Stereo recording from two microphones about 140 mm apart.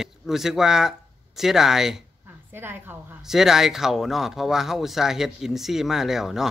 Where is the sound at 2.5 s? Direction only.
15° right (ahead or behind).